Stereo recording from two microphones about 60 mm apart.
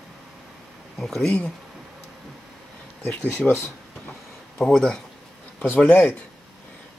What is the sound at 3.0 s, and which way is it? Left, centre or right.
Speech, left.